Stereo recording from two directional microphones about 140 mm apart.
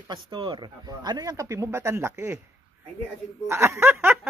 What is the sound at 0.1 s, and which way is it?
Speech, 35° right (ahead or behind).